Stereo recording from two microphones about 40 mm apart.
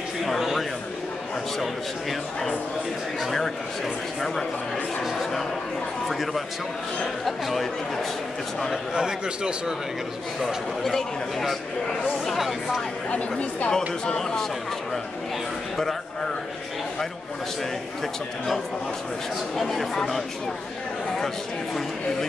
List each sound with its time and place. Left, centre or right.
0.2 s a sound: centre
1.6 s speech: centre
5.0 s speech: centre
8.9 s a man's voice: right
10.8 s speech: centre
13.1 s a woman's voice: left
13.7 s speech: centre
19.5 s speech: centre